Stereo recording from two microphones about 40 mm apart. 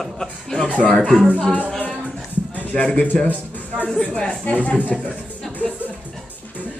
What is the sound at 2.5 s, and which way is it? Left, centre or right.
Speech, left.